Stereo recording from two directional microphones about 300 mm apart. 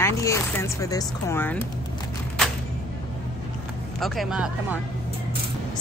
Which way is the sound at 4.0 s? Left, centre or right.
Centre.